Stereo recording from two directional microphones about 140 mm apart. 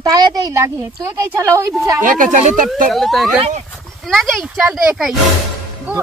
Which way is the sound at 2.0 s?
70° right (ahead or behind).